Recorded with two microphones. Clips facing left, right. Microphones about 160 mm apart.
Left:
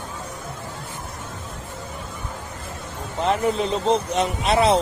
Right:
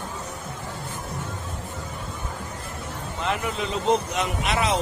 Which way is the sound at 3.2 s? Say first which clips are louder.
Left 7 dB; 35° left (ahead or behind).